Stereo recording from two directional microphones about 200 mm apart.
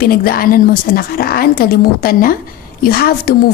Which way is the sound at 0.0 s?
45° left (ahead or behind).